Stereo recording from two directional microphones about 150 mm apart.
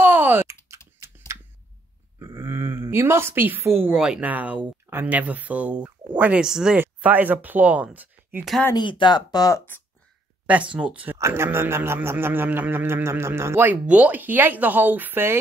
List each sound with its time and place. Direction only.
0.0 s typing: 15° right (ahead or behind)
0.9 s a sound: 20° right (ahead or behind)
3.8 s speech: 5° right (ahead or behind)
8.7 s speech: 30° left (ahead or behind); by 9.8 s 15° left (ahead or behind)
10.4 s speech: 10° right (ahead or behind)